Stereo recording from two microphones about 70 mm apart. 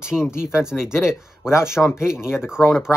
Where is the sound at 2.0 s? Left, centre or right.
Centre.